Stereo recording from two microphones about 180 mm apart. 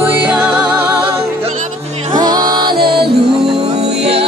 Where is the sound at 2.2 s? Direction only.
20° right (ahead or behind).